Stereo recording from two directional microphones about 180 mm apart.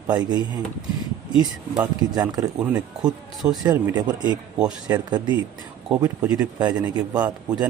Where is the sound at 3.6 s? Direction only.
20° right (ahead or behind).